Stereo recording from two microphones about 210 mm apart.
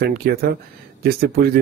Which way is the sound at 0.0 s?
45° right (ahead or behind).